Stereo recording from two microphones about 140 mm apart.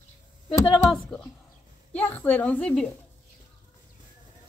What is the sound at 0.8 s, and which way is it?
A woman's voice, 5° left (ahead or behind).